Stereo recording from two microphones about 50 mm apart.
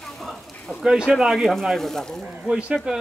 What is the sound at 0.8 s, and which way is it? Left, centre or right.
Speech, centre.